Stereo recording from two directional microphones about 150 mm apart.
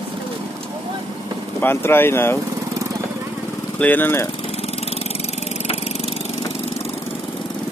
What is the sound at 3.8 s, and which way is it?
Speech, 10° left (ahead or behind).